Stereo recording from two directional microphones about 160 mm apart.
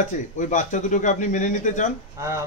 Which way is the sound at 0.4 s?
50° left (ahead or behind).